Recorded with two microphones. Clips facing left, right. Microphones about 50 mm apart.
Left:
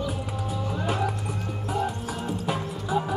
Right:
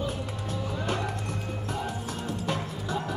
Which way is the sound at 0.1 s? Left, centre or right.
Centre.